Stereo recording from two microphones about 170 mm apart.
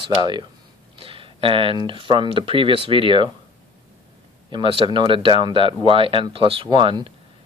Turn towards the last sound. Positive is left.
turn(degrees=-30)  # may be behind; listen again after turning